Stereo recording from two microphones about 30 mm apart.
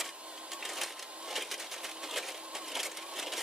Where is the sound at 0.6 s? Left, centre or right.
Centre.